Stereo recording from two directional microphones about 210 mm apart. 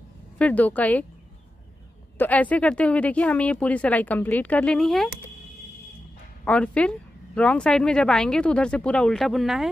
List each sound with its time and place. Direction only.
0.4 s speech: 5° left (ahead or behind)
2.1 s speech: 5° left (ahead or behind)
6.4 s a woman's voice: 5° left (ahead or behind)